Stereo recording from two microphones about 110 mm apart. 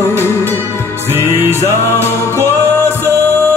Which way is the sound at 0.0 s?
20° left (ahead or behind).